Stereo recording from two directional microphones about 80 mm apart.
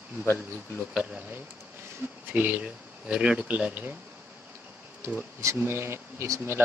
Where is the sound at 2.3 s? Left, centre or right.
Right.